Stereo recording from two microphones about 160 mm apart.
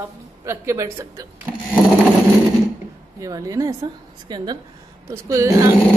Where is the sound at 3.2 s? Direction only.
20° right (ahead or behind).